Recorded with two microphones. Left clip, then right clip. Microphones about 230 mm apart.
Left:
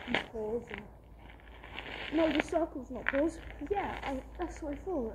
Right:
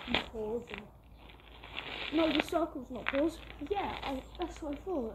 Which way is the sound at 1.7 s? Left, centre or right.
Centre.